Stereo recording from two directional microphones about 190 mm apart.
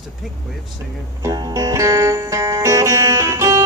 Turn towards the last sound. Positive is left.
turn(degrees=-15)  # may be behind; listen again after turning